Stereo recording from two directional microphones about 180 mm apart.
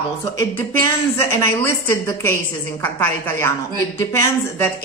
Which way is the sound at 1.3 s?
10° left (ahead or behind).